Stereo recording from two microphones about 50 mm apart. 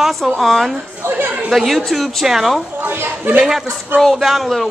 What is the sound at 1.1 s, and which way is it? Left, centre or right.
Speech, right.